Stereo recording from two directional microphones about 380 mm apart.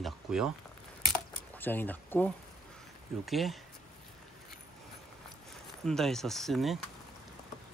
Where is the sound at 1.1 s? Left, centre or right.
Centre.